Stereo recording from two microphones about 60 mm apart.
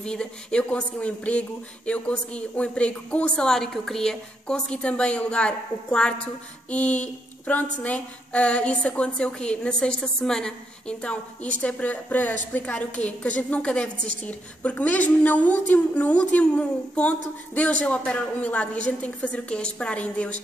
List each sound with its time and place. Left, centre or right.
0.0 s a woman's voice: centre